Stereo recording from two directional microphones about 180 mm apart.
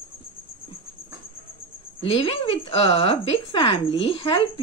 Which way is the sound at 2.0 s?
30° left (ahead or behind).